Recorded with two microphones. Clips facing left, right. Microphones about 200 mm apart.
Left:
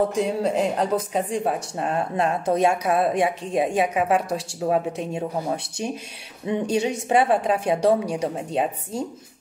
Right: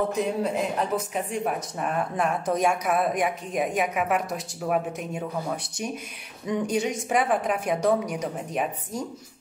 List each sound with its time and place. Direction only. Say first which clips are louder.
0.1 s speech: left 3 dB; 30° left (ahead or behind)
6.4 s speech: left 3 dB; 25° left (ahead or behind)